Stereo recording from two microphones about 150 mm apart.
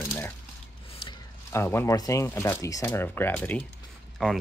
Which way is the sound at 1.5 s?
15° left (ahead or behind).